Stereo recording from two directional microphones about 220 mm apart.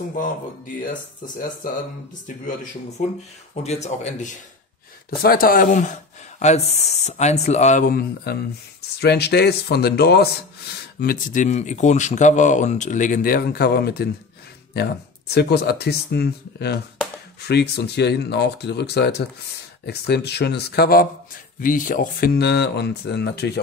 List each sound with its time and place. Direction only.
0.8 s speech: 40° left (ahead or behind)
3.6 s speech: 30° left (ahead or behind); by 23.6 s 50° left (ahead or behind)